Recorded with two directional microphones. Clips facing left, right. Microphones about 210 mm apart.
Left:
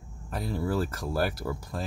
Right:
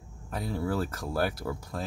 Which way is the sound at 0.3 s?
5° left (ahead or behind).